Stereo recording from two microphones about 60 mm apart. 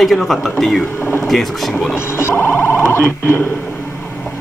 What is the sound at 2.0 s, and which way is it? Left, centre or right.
Speech, left.